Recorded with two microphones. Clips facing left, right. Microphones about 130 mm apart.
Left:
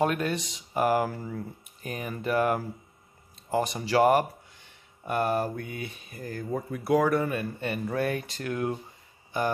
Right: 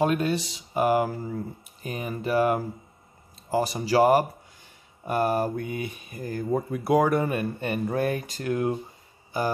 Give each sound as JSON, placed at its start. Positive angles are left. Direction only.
{"t": 0.0, "sound": "speech", "side_deg": -25}
{"t": 3.6, "sound": "speech", "side_deg": -35}
{"t": 5.3, "sound": "speech", "side_deg": -15}
{"t": 7.3, "sound": "speech", "side_deg": -45}